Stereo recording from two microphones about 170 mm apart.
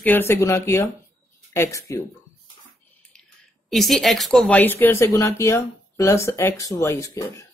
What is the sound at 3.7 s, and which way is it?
Speech, centre (ahead or behind).